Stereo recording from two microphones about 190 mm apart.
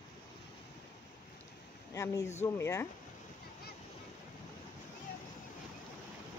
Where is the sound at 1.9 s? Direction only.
15° left (ahead or behind).